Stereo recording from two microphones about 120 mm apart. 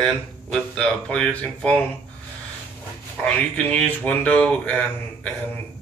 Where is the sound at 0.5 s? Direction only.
10° left (ahead or behind).